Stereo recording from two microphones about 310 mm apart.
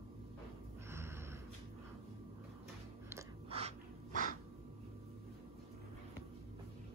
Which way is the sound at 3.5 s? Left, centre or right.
Centre.